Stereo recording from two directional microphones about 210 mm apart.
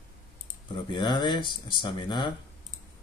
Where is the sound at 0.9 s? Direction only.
20° left (ahead or behind).